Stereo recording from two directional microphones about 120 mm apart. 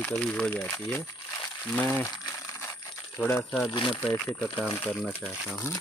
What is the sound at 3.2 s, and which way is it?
Speech, 15° left (ahead or behind).